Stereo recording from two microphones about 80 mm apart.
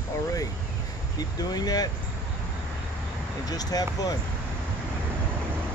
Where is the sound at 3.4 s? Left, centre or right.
Left.